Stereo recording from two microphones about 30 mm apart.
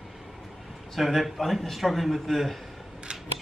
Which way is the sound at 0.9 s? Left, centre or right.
Centre.